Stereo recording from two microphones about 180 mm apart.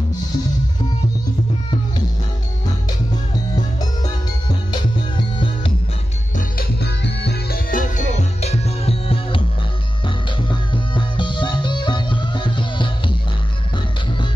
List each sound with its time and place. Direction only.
3.5 s music: 25° left (ahead or behind)
6.3 s music: 60° left (ahead or behind); by 13.1 s 25° left (ahead or behind)